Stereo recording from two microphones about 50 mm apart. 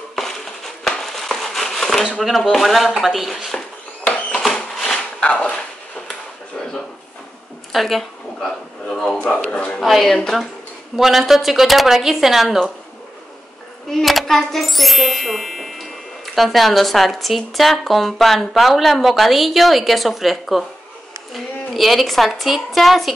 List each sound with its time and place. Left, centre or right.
0.8 s a sound: centre
2.1 s speech: centre
4.3 s a sound: centre
5.2 s a sound: left
7.7 s speech: centre
9.2 s a man's voice: left
9.8 s a woman's voice: centre
11.0 s speech: centre
14.0 s a woman's voice: centre